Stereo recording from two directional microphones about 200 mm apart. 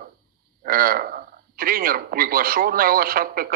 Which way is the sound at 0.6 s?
45° right (ahead or behind).